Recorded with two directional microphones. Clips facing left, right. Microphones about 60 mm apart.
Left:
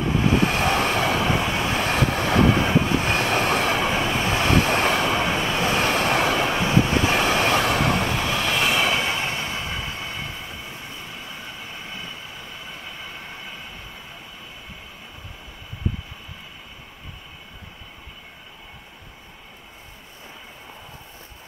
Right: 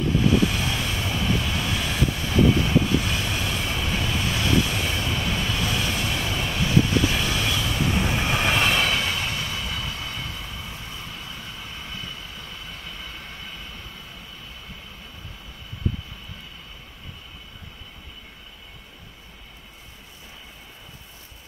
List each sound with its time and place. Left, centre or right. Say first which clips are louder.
0.1 s vehicle: left 1 dB; left
1.3 s vehicle: left 4 dB; left
1.9 s vehicle: left 5 dB; left
2.6 s vehicle: left 2 dB; left
3.2 s train: left 7 dB; left
3.9 s train: left 4 dB; left
5.1 s vehicle: left 5 dB; left
5.8 s vehicle: left 7 dB; left
6.5 s vehicle: left 2 dB; left
7.2 s train: left 6 dB; left
8.3 s train: right 1 dB; centre
8.5 s train: left 3 dB; centre
8.9 s train: left 2 dB; left